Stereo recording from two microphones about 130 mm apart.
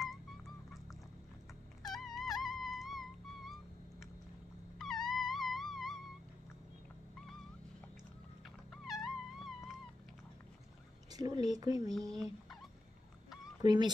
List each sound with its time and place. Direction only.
1.8 s music: centre (ahead or behind)
4.7 s dog: 5° left (ahead or behind)
8.8 s music: centre (ahead or behind)
11.1 s speech: 30° right (ahead or behind)
12.1 s speech: 5° left (ahead or behind)
13.6 s speech: 35° right (ahead or behind)